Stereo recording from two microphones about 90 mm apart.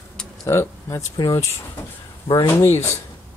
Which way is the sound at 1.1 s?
50° left (ahead or behind).